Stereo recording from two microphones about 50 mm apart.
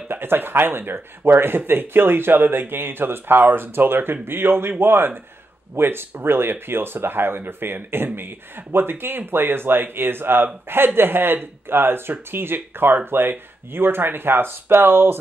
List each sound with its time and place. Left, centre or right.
0.1 s speech: right